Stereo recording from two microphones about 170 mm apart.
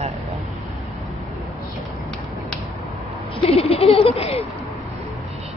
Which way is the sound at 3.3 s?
35° left (ahead or behind).